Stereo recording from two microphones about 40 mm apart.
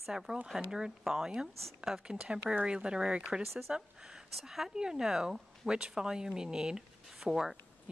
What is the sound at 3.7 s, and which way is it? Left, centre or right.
A woman's voice, centre.